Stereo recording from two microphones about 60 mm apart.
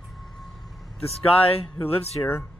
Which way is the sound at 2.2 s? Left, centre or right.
Left.